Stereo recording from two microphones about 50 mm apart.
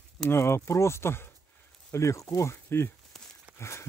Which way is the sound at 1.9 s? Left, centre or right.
Left.